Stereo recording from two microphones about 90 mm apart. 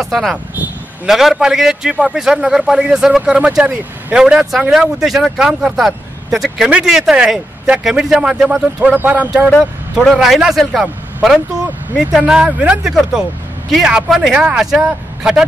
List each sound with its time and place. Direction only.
0.0 s a man's voice: centre (ahead or behind)
8.8 s a man's voice: 15° right (ahead or behind)
9.6 s a man's voice: centre (ahead or behind)
12.0 s a man's voice: 10° right (ahead or behind)